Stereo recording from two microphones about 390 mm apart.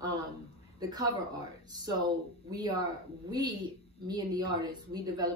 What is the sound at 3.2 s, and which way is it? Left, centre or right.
Speech, centre.